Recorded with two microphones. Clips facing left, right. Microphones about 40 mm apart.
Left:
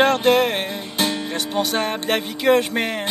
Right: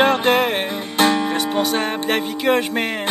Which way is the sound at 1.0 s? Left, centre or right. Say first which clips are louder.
Right 7 dB; right.